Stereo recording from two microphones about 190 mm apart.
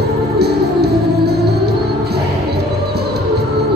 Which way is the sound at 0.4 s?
55° right (ahead or behind).